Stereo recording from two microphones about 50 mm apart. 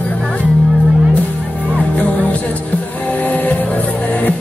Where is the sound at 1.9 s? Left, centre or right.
Left.